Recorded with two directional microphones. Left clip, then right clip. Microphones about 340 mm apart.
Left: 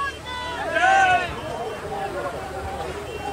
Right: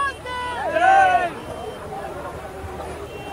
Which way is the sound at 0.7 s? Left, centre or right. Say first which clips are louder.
Right 2 dB; centre.